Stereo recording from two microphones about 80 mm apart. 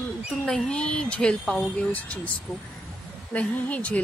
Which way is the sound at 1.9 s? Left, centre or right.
Centre.